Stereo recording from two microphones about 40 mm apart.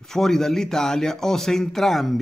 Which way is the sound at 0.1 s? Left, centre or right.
Centre.